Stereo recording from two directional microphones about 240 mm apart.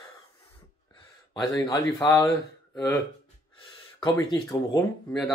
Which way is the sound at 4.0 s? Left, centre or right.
Centre.